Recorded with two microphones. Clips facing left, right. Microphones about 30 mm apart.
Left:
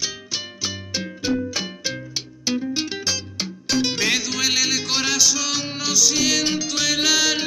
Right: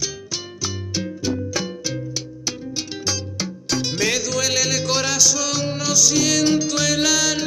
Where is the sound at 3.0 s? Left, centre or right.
Centre.